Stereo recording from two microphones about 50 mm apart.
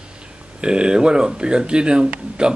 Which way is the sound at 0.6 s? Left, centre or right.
Centre.